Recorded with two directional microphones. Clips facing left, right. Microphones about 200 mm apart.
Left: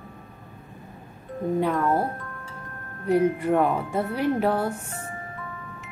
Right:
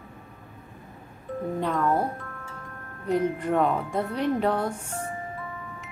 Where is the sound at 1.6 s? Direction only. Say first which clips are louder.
Even; 5° left (ahead or behind).